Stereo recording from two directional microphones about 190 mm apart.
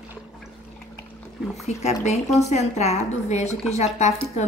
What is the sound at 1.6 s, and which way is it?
A woman's voice, 35° left (ahead or behind).